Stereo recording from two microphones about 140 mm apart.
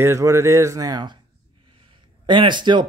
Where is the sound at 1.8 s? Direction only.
35° right (ahead or behind).